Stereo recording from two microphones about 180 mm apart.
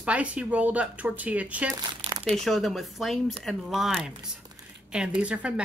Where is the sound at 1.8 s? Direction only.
25° right (ahead or behind).